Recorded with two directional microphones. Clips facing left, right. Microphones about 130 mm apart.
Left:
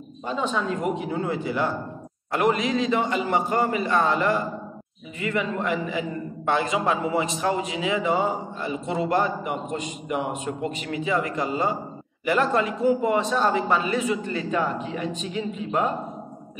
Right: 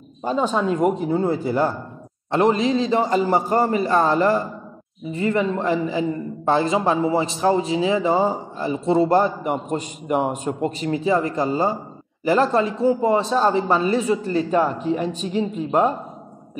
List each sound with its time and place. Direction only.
0.2 s a man's voice: 40° right (ahead or behind)